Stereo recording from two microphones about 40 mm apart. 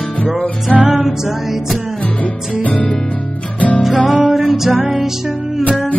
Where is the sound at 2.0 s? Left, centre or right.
Left.